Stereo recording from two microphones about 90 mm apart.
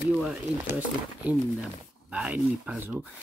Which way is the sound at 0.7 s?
15° right (ahead or behind).